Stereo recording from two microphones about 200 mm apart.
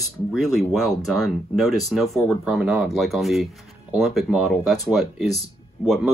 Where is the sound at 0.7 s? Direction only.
Centre (ahead or behind).